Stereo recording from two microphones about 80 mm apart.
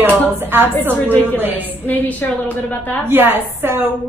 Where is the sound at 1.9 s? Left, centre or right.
Left.